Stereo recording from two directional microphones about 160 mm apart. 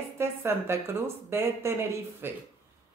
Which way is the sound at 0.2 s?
15° right (ahead or behind).